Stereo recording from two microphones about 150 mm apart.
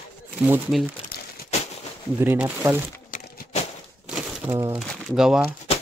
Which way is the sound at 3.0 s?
65° left (ahead or behind).